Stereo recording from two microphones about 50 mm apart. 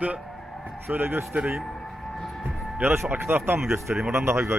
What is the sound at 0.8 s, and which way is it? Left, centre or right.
Speech, right.